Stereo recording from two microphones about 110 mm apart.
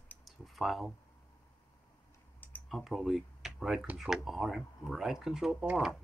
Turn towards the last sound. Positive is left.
turn(degrees=-5)  # may be behind; listen again after turning